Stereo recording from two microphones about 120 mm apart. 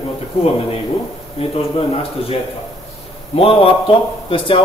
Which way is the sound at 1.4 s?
55° left (ahead or behind).